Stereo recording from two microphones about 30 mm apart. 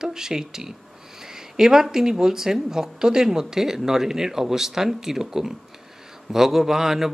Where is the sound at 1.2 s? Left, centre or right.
Centre.